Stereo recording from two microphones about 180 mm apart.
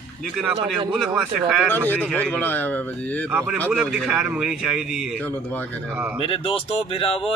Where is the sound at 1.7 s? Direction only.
10° left (ahead or behind).